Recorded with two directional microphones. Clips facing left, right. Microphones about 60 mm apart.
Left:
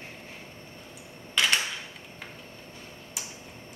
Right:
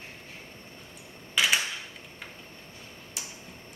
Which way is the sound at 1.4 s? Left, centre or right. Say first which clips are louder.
Even; centre.